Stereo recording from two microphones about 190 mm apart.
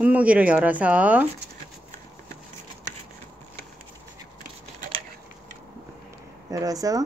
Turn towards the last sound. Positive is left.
turn(degrees=-20)  # may be behind; listen again after turning